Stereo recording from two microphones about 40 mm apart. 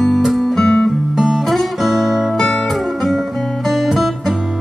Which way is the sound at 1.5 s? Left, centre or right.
Centre.